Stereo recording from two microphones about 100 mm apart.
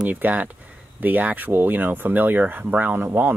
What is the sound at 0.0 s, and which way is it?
Speech, 15° right (ahead or behind).